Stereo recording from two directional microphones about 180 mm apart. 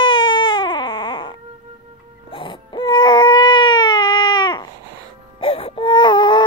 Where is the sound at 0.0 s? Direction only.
25° left (ahead or behind).